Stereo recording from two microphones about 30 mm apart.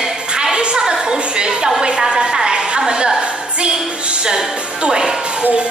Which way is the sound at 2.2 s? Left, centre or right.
Right.